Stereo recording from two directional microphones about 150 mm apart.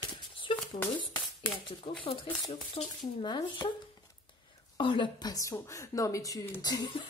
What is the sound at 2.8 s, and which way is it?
Speech, 40° left (ahead or behind).